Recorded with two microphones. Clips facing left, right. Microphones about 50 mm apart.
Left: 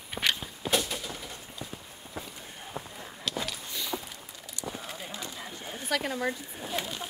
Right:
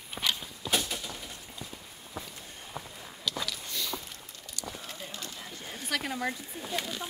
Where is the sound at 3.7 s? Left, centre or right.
Centre.